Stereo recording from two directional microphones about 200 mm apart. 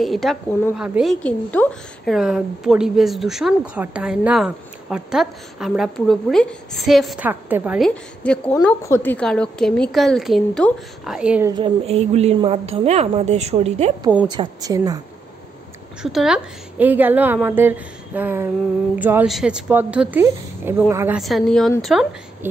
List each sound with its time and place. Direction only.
0.0 s a woman's voice: centre (ahead or behind)
1.2 s a woman's voice: 5° left (ahead or behind)
7.9 s a woman's voice: 5° left (ahead or behind)
11.5 s speech: 25° right (ahead or behind)
14.3 s a woman's voice: 20° right (ahead or behind)
16.0 s a woman's voice: 5° right (ahead or behind)
21.2 s a woman's voice: centre (ahead or behind)